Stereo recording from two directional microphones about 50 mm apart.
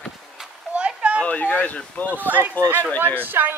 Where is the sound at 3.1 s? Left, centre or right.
Right.